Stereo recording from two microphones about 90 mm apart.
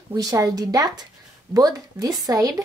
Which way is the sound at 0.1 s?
45° right (ahead or behind).